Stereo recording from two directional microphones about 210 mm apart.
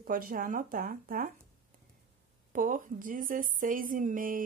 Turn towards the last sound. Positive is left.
turn(degrees=-40)  # may be behind; listen again after turning